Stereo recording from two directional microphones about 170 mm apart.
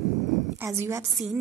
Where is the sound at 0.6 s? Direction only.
15° right (ahead or behind).